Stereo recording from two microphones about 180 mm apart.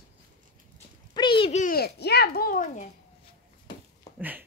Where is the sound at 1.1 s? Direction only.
25° left (ahead or behind).